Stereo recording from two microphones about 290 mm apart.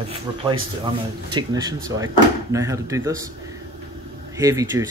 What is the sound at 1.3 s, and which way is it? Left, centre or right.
A man's voice, centre.